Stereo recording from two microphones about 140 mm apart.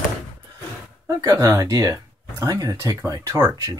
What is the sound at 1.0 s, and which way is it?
Speech, 25° right (ahead or behind).